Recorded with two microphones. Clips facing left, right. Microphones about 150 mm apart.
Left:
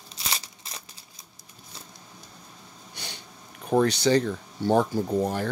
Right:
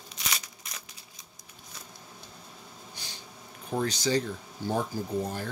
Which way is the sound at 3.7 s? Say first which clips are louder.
Left 7 dB; 70° left (ahead or behind).